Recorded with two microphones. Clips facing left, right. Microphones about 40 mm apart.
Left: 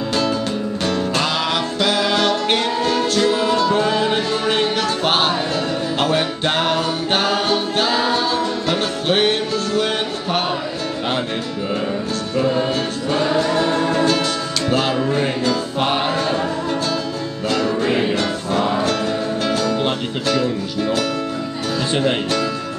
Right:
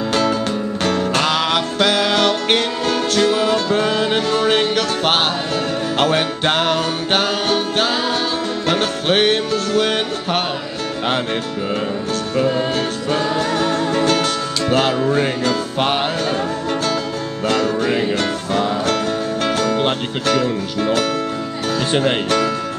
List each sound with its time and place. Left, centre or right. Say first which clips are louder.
0.1 s music: right 2 dB; right
12.4 s music: even; centre
13.6 s music: left 1 dB; left
13.9 s music: right 1 dB; right
17.5 s music: right 1 dB; right
18.9 s music: right 1 dB; right